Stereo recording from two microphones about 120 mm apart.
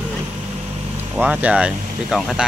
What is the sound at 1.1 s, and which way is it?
Speech, 10° right (ahead or behind).